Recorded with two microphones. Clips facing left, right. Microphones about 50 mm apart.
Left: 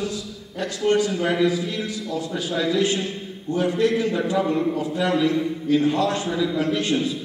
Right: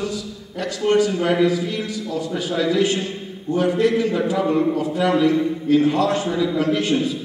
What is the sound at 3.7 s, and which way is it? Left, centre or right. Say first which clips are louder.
A man's voice: right 2 dB; centre.